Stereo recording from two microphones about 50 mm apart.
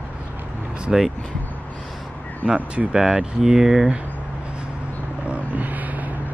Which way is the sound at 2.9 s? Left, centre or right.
Centre.